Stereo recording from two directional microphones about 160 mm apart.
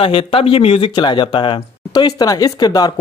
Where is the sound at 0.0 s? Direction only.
35° left (ahead or behind).